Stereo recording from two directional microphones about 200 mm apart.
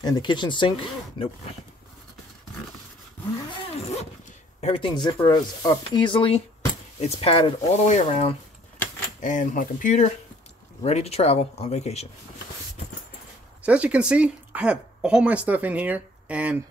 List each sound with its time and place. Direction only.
0.0 s speech: 20° left (ahead or behind)
3.6 s zipper: 30° left (ahead or behind)
4.6 s speech: 30° left (ahead or behind)
13.6 s speech: 5° right (ahead or behind)